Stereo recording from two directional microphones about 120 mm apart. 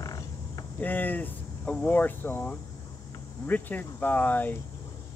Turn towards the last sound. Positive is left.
turn(degrees=15)  # may be behind; listen again after turning